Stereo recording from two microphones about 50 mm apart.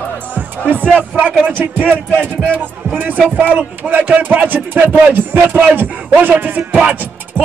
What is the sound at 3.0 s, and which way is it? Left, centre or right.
Music, right.